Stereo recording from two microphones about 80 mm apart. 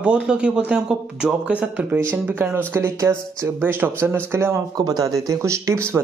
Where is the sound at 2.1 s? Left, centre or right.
Right.